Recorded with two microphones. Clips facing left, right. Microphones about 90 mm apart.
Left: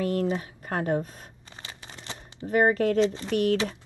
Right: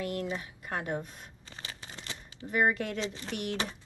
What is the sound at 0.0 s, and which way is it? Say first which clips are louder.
Speech: left 8 dB; 40° left (ahead or behind).